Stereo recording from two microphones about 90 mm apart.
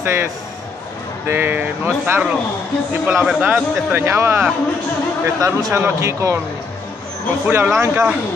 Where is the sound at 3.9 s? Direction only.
30° right (ahead or behind).